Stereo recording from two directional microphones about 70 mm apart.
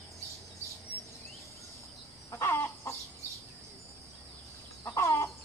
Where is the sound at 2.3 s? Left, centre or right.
Left.